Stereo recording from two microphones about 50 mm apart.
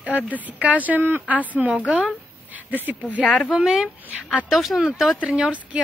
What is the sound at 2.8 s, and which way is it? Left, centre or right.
Speech, right.